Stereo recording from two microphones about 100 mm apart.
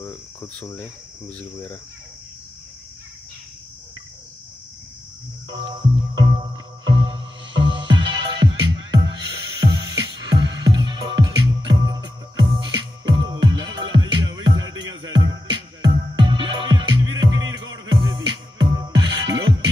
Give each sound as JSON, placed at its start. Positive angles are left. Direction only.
{"t": 0.0, "sound": "cricket", "side_deg": 25}
{"t": 5.5, "sound": "music", "side_deg": -60}